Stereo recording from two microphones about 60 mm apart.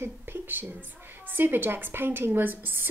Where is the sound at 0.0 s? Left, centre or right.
Right.